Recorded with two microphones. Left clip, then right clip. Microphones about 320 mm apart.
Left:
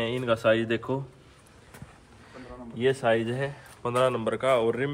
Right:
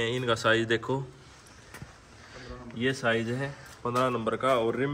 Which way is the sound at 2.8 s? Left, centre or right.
Left.